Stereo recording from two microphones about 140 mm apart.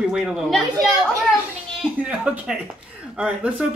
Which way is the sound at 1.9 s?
10° right (ahead or behind).